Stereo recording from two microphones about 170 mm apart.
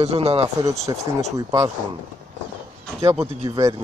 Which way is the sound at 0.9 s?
20° right (ahead or behind).